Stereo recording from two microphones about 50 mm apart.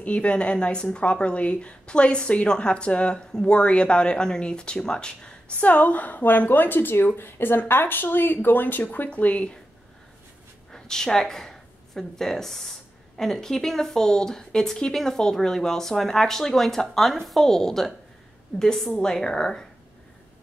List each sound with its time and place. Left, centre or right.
0.0 s a woman's voice: left
5.7 s speech: left
10.7 s a woman's voice: centre